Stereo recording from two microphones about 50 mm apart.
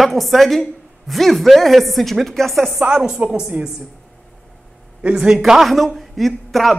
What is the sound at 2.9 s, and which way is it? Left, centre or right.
Speech, centre.